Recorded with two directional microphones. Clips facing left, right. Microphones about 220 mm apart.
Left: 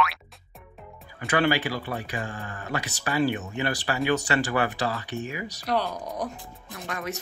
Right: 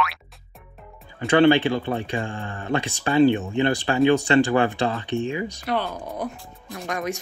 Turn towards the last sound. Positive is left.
turn(degrees=-15)  # may be behind; listen again after turning